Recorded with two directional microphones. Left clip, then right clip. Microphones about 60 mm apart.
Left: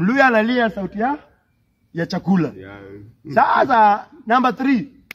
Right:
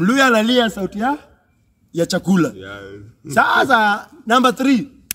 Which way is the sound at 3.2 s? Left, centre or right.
Right.